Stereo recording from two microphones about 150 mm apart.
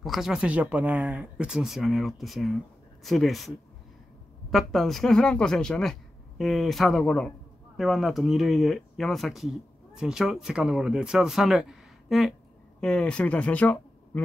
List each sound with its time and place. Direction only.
0.0 s speech: centre (ahead or behind)